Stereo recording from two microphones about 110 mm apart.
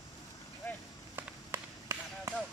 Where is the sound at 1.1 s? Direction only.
25° right (ahead or behind).